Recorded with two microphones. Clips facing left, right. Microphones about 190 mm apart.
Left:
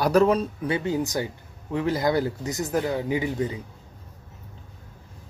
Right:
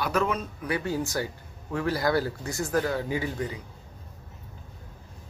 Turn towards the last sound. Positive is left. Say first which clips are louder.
# left 4 dB
turn(degrees=20)  # may be behind; listen again after turning